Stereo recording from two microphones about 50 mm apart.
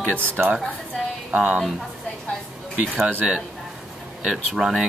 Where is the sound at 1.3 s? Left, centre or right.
Right.